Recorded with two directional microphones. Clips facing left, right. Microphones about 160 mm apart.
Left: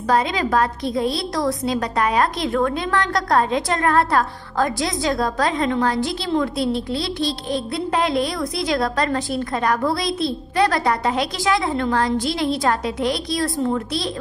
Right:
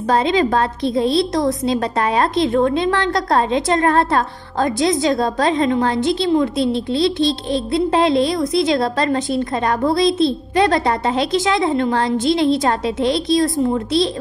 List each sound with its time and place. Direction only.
0.1 s speech: 25° right (ahead or behind)